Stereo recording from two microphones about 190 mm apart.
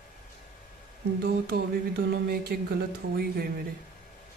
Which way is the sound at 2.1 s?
55° right (ahead or behind).